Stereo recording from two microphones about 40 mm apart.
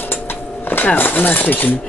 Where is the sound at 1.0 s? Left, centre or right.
Left.